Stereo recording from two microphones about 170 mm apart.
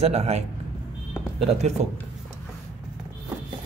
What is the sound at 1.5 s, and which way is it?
Speech, 40° right (ahead or behind).